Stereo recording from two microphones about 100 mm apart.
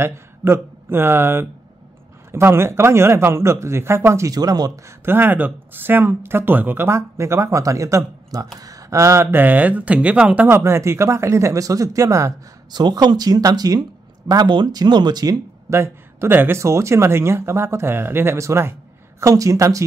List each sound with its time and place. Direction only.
0.0 s speech: 25° right (ahead or behind)
5.0 s speech: 20° right (ahead or behind)
10.6 s speech: 30° right (ahead or behind)
12.7 s speech: 45° right (ahead or behind)
15.7 s speech: 25° right (ahead or behind)